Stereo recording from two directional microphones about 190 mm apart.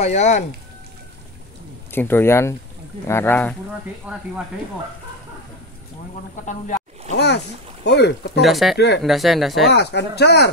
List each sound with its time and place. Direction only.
0.0 s speech: 40° left (ahead or behind)
1.9 s speech: 10° left (ahead or behind)
4.1 s speech: 5° right (ahead or behind)
6.4 s a sound: 40° left (ahead or behind)
7.8 s speech: 65° left (ahead or behind)
8.4 s speech: centre (ahead or behind)
8.7 s speech: 65° left (ahead or behind)
9.0 s speech: centre (ahead or behind)
9.8 s speech: 65° left (ahead or behind)